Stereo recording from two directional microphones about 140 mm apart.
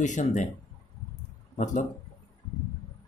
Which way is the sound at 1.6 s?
70° left (ahead or behind).